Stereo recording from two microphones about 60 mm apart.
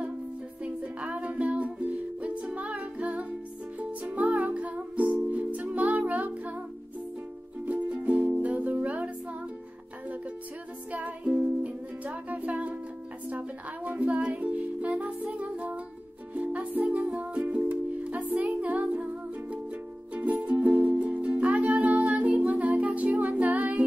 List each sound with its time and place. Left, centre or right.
0.7 s music: right
7.6 s music: right
10.9 s music: right
20.2 s music: right